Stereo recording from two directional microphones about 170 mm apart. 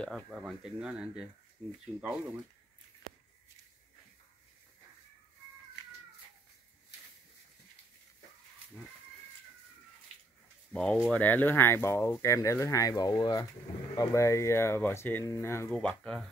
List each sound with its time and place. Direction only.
0.0 s speech: centre (ahead or behind)
10.7 s speech: 5° left (ahead or behind)